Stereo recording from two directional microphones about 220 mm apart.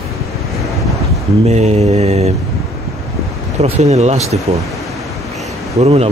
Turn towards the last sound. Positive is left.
turn(degrees=-25)  # may be behind; listen again after turning